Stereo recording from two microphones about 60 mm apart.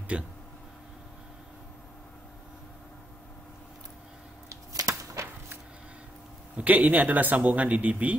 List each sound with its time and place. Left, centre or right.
0.1 s speech: centre
4.5 s a sound: right
6.5 s a man's voice: right